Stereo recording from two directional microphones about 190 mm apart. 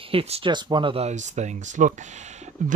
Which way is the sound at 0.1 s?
30° right (ahead or behind).